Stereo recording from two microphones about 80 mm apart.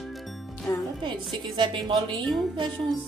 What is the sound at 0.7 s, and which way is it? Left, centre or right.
Speech, left.